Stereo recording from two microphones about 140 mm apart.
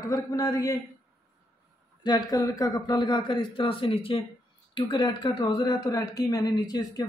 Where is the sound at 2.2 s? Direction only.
25° left (ahead or behind).